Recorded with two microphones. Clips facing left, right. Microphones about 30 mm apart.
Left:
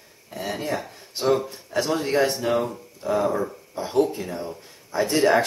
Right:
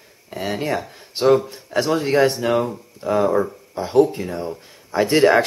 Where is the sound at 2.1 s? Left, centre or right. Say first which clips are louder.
Right 5 dB; right.